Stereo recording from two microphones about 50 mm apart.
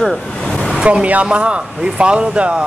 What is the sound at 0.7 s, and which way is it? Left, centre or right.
Speech, centre.